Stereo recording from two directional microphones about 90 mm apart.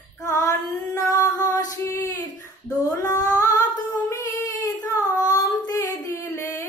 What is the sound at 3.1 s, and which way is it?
Child singing, 45° left (ahead or behind).